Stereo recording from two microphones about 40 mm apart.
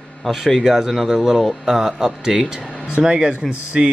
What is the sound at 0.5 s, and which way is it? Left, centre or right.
Speech, centre.